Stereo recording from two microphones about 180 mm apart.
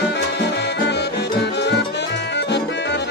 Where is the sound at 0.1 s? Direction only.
70° left (ahead or behind).